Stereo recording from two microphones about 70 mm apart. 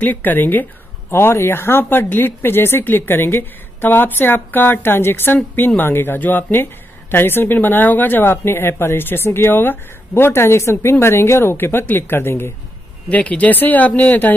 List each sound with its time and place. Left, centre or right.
0.0 s a woman's voice: left
13.1 s speech: centre